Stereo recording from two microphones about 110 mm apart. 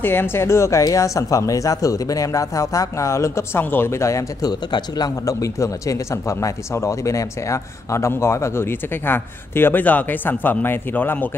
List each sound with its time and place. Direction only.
0.0 s speech: 20° left (ahead or behind)